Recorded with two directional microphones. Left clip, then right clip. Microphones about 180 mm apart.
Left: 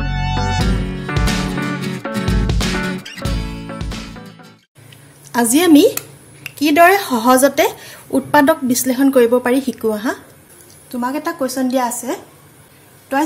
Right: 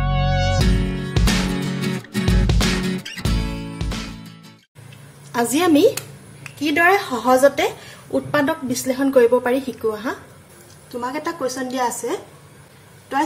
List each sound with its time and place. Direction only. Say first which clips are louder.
0.6 s music: left 2 dB; centre (ahead or behind)
5.3 s a woman's voice: left 5 dB; 50° left (ahead or behind)